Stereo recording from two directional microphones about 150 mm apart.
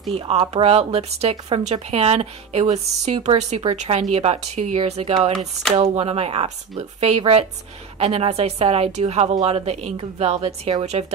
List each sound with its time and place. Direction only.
0.1 s speech: 40° right (ahead or behind)